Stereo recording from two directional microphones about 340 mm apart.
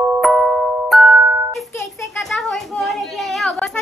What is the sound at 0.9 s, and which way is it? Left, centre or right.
Music, centre.